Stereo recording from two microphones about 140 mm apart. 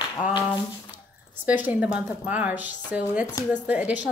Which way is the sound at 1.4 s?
10° right (ahead or behind).